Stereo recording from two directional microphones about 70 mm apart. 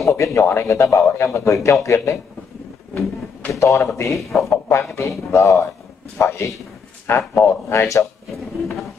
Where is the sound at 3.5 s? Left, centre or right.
Left.